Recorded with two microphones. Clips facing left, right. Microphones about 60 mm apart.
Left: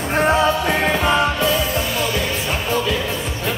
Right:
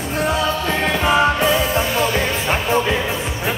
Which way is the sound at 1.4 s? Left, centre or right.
Centre.